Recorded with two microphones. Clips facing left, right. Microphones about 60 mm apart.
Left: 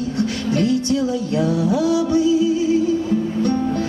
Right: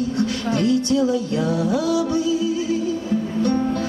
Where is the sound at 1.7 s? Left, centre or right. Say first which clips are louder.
Left 3 dB; left.